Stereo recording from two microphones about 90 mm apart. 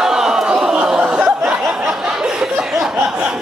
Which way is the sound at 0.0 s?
5° right (ahead or behind).